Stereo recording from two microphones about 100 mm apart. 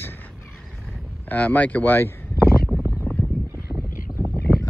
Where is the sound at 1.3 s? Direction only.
15° left (ahead or behind).